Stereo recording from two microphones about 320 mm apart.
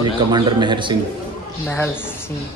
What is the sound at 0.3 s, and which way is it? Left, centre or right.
Speech, centre.